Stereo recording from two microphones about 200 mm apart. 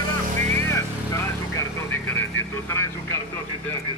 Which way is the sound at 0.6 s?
15° left (ahead or behind).